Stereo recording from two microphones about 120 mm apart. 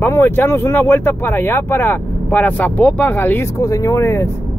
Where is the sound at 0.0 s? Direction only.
20° left (ahead or behind).